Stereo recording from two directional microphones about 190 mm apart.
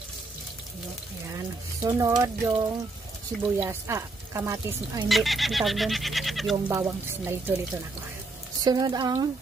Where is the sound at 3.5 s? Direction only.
15° right (ahead or behind).